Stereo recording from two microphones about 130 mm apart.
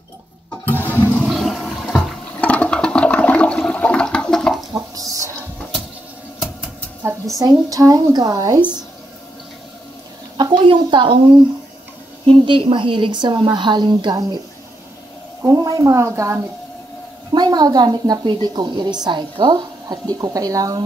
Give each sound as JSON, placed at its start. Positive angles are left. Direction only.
{"t": 1.1, "sound": "toilet flush", "side_deg": 0}
{"t": 4.9, "sound": "a sound", "side_deg": -25}
{"t": 7.0, "sound": "a woman's voice", "side_deg": -20}
{"t": 10.3, "sound": "a woman's voice", "side_deg": -35}
{"t": 12.3, "sound": "a woman's voice", "side_deg": -45}
{"t": 15.4, "sound": "a woman's voice", "side_deg": -25}
{"t": 17.3, "sound": "a woman's voice", "side_deg": -35}